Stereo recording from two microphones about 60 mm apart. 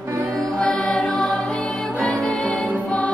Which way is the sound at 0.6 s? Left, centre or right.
Centre.